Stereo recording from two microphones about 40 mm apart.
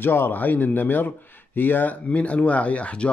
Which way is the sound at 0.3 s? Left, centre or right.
Left.